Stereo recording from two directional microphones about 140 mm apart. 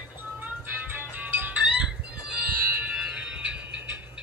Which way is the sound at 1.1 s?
10° right (ahead or behind).